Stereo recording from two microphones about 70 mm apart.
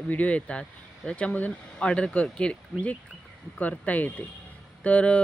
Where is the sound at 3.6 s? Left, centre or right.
Centre.